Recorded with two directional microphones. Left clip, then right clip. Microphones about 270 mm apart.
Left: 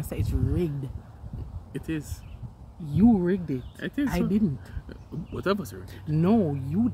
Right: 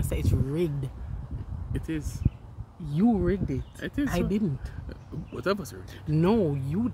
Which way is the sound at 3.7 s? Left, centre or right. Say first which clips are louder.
Left 2 dB; centre.